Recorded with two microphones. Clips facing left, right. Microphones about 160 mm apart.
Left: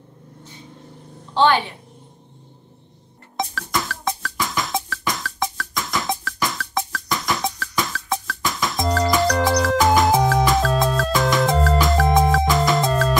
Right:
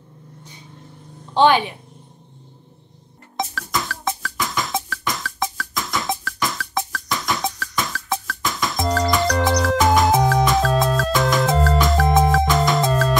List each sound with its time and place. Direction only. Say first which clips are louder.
1.3 s a woman's voice: right 2 dB; 15° right (ahead or behind)
3.3 s music: even; centre (ahead or behind)